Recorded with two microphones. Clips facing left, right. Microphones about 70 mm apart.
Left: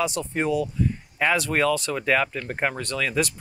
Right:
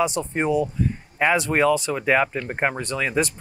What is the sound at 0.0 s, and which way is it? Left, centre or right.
Speech, right.